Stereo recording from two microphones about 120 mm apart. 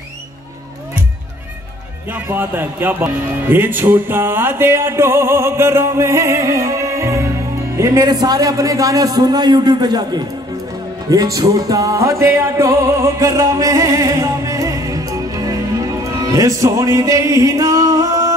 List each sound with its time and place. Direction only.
2.0 s a man's voice: 15° right (ahead or behind); by 10.2 s 35° right (ahead or behind)
11.1 s music: 30° right (ahead or behind)